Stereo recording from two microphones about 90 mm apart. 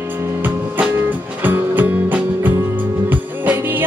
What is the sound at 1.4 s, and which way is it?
Music, 20° right (ahead or behind).